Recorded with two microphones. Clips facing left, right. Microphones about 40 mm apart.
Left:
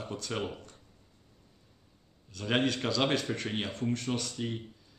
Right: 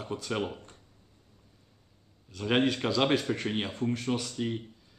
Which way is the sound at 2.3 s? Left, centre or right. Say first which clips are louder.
Right 3 dB; centre.